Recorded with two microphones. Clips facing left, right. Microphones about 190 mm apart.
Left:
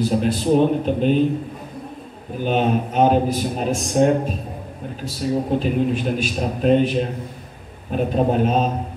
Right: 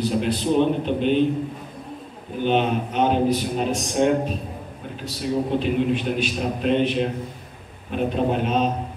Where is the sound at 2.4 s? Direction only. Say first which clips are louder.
Left 1 dB; 40° left (ahead or behind).